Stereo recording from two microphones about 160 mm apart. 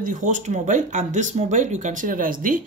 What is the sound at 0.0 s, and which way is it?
Speech, 50° right (ahead or behind).